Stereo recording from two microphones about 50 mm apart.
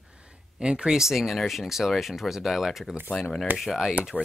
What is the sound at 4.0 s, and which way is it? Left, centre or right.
Speech, right.